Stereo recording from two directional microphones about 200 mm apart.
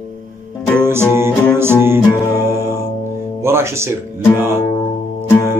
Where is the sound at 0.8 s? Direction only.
10° right (ahead or behind).